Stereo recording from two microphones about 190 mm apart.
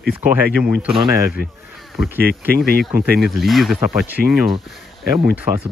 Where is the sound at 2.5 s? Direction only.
55° right (ahead or behind).